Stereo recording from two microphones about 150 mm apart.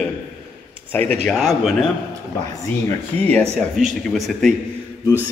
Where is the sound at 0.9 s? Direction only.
10° left (ahead or behind).